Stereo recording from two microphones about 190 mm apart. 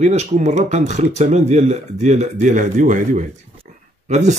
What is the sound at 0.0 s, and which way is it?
A man's voice, 35° right (ahead or behind).